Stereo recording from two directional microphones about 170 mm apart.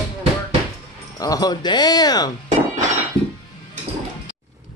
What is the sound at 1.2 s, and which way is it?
Speech, 20° left (ahead or behind).